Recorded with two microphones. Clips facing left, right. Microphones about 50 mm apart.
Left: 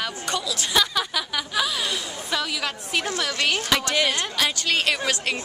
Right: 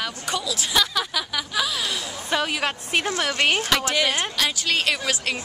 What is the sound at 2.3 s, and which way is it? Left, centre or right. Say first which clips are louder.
A woman's voice: right 3 dB; right.